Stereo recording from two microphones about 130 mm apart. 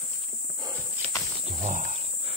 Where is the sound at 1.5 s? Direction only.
65° right (ahead or behind).